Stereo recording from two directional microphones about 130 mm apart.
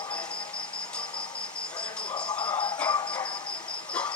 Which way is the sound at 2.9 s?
35° left (ahead or behind).